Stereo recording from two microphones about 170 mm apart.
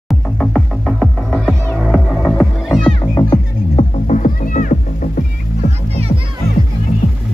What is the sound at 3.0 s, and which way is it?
Music, 30° left (ahead or behind).